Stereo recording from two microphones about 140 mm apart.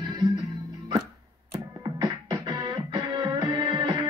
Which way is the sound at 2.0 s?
30° right (ahead or behind).